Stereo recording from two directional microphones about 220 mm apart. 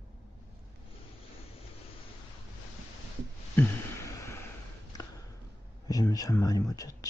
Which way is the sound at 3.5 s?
10° left (ahead or behind).